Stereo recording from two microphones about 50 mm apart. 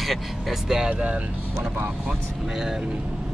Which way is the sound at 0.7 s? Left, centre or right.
Centre.